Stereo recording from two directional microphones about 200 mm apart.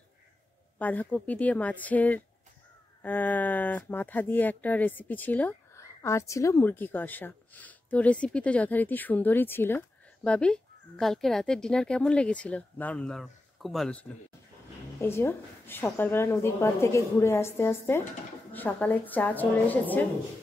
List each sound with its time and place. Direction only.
0.7 s speech: 10° left (ahead or behind)